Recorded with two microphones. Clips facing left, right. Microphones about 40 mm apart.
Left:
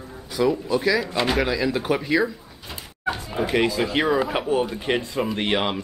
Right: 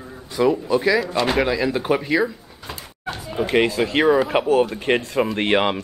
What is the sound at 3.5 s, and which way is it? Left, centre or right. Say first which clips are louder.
Speech: right 3 dB; right.